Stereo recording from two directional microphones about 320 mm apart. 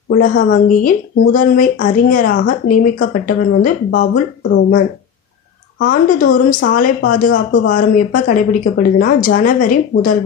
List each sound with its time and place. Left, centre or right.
0.1 s speech: left
5.8 s speech: left